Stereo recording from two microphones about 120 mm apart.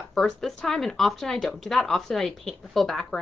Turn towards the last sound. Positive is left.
turn(degrees=5)  # may be behind; listen again after turning